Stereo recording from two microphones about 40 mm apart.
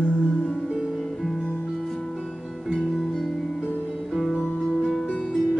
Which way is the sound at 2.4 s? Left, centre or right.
Centre.